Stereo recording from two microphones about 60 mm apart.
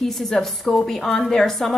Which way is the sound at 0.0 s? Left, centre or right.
Centre.